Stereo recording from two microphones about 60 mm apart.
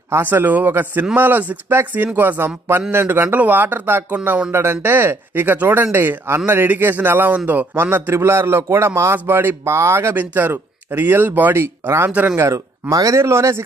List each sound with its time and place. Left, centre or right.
0.2 s a man's voice: right
9.2 s speech: right
9.7 s speech: right
11.6 s a man's voice: right
12.1 s speech: right
12.4 s a man's voice: right